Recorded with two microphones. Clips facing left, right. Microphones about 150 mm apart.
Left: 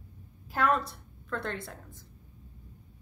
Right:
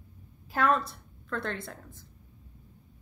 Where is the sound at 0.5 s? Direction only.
10° left (ahead or behind).